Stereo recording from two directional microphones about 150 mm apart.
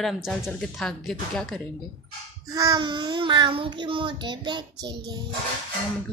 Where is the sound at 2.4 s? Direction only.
25° right (ahead or behind).